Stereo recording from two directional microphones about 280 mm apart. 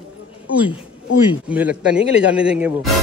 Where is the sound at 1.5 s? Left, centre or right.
Centre.